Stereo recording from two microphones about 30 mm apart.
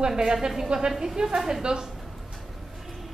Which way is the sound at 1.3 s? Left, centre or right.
Centre.